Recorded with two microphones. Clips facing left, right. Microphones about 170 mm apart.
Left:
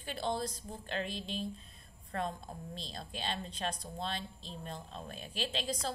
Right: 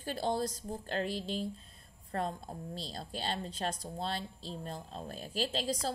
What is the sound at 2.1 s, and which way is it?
A woman's voice, 35° right (ahead or behind).